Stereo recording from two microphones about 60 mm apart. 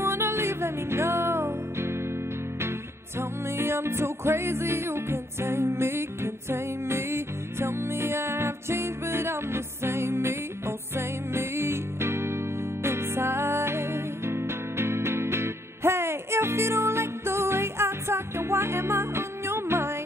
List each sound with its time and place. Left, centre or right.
0.0 s music: right
3.2 s music: right